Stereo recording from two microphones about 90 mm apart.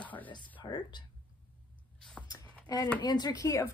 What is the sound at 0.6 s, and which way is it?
Speech, 55° left (ahead or behind).